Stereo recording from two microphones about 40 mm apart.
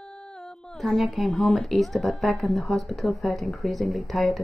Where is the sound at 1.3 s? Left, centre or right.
Centre.